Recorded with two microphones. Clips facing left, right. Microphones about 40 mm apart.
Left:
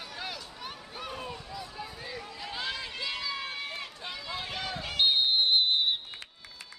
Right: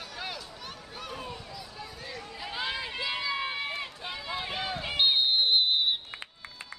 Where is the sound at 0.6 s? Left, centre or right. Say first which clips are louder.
Left 1 dB; centre.